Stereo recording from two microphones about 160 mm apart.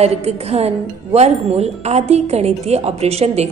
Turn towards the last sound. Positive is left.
turn(degrees=-40)  # may be behind; listen again after turning